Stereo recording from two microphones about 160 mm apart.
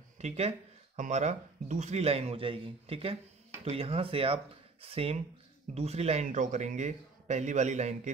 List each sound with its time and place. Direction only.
0.2 s a man's voice: 40° right (ahead or behind)